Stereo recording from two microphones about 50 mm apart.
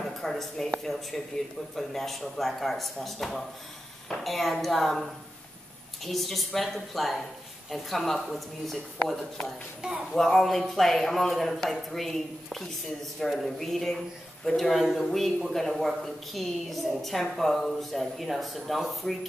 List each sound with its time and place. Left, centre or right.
0.0 s a woman's voice: centre
9.8 s speech: centre
10.1 s a man's voice: centre
13.4 s a man's voice: centre
14.6 s a woman's voice: centre